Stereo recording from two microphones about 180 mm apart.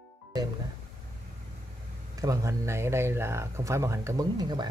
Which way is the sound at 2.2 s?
15° right (ahead or behind).